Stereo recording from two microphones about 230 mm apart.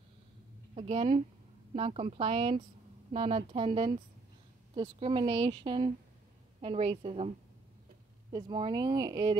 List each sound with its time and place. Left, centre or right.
0.7 s a woman's voice: right
8.3 s speech: centre